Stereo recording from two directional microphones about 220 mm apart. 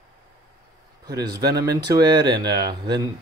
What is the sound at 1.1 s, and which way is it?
Speech, 15° right (ahead or behind).